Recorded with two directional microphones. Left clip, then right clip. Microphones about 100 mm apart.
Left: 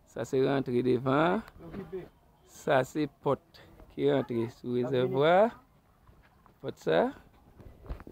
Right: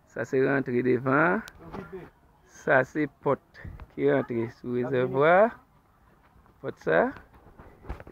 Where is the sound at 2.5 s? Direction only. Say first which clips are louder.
Right 4 dB; centre (ahead or behind).